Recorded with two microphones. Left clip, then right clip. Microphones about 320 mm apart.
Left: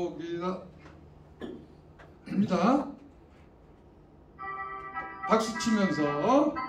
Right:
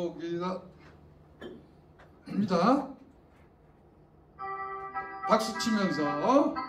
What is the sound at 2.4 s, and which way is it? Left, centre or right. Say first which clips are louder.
Speech: right 1 dB; centre.